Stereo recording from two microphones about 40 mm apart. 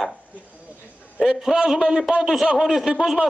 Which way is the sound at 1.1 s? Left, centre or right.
Centre.